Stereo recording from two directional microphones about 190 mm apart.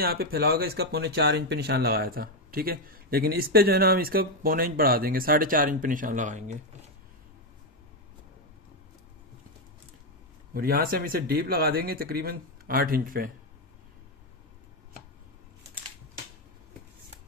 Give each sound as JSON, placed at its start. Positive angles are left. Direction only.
{"t": 0.0, "sound": "speech", "side_deg": -55}
{"t": 10.5, "sound": "speech", "side_deg": -50}